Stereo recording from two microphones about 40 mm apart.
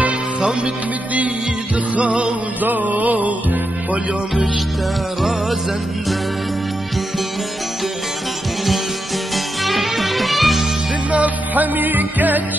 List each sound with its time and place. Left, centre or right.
0.4 s music: right
2.0 s music: right
2.6 s music: right
9.3 s music: centre
11.1 s music: right